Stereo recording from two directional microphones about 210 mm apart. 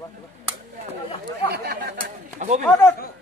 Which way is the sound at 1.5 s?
50° right (ahead or behind).